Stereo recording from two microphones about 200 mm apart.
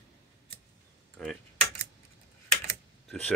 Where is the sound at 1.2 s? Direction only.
5° left (ahead or behind).